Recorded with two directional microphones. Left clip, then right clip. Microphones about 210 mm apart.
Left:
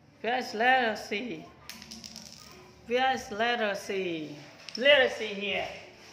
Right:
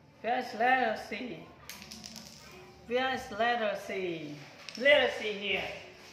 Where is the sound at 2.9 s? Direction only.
35° left (ahead or behind).